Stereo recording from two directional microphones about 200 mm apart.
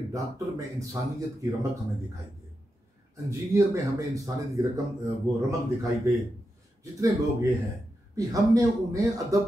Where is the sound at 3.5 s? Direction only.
15° right (ahead or behind).